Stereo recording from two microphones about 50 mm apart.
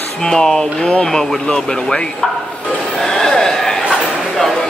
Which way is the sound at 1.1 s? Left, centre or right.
Centre.